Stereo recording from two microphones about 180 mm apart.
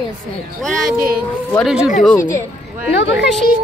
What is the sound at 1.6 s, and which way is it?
Speech, 5° right (ahead or behind).